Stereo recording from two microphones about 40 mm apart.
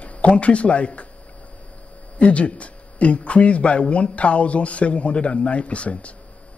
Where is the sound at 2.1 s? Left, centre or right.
Left.